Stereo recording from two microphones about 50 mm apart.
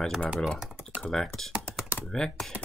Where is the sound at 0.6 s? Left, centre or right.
Centre.